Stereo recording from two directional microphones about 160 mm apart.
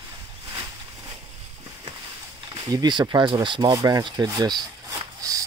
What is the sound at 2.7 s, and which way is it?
Speech, 25° right (ahead or behind).